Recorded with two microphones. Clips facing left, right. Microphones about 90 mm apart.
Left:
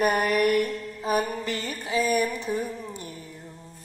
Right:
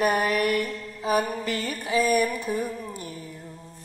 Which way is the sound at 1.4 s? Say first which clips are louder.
Right 2 dB; 30° left (ahead or behind).